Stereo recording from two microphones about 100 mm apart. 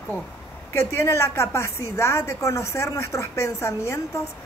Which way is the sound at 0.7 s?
30° left (ahead or behind).